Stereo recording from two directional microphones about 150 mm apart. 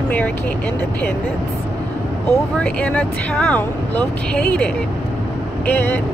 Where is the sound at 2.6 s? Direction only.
10° left (ahead or behind).